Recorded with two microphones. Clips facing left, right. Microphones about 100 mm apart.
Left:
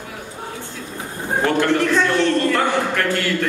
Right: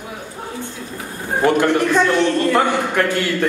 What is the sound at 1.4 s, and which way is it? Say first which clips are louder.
A man's voice: right 3 dB; 15° right (ahead or behind).